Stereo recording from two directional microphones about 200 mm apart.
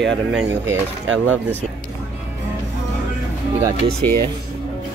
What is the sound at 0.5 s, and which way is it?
Speech, 10° right (ahead or behind).